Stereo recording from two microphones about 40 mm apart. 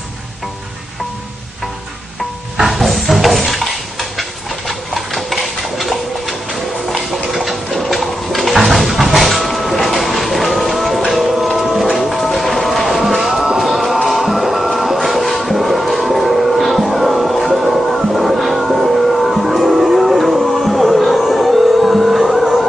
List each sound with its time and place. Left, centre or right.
2.6 s music: centre
15.0 s a sound: centre
18.1 s music: centre